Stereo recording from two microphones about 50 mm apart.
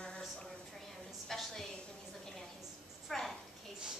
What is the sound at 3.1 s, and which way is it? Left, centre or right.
Speech, centre.